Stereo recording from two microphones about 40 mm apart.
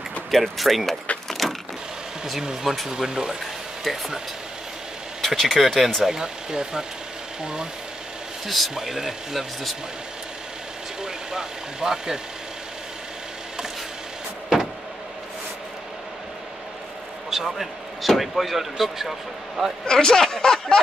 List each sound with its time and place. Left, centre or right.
0.3 s speech: centre
1.4 s vehicle: centre
2.6 s speech: centre
2.9 s speech: centre
5.2 s speech: centre
6.0 s speech: centre
8.5 s speech: centre
8.7 s speech: centre
11.0 s speech: centre
17.6 s speech: centre
19.9 s speech: centre